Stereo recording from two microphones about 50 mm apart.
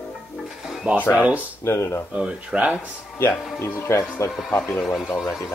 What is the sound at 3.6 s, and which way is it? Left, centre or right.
Speech, left.